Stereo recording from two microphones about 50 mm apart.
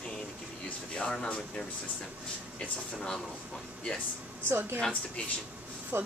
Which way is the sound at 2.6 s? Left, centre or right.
Centre.